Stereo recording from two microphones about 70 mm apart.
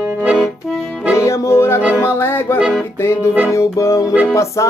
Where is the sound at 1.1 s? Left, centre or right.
Left.